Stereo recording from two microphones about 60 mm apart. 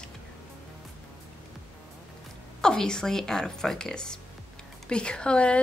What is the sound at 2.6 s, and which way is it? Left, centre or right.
A woman's voice, centre.